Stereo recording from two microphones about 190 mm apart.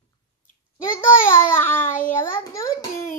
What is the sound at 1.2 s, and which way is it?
A child's voice, 10° left (ahead or behind).